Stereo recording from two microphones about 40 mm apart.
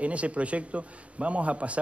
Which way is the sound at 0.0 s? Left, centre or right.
Right.